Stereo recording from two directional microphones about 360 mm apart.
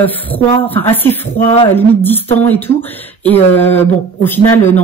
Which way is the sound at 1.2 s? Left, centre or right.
Centre.